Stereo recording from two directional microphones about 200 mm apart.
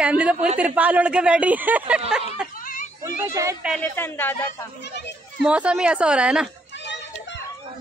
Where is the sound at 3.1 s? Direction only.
15° right (ahead or behind).